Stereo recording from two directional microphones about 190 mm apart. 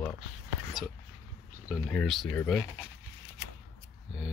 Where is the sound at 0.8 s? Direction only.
Centre (ahead or behind).